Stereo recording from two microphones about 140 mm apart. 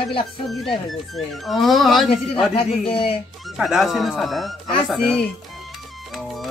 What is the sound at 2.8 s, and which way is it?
Speech, 40° left (ahead or behind).